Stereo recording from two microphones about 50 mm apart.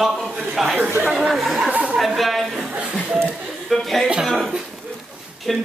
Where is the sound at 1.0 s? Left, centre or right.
Centre.